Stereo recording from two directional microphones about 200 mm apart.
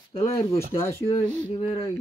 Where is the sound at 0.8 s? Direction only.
10° left (ahead or behind).